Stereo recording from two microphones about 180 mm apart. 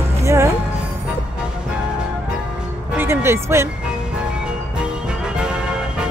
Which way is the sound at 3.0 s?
15° right (ahead or behind).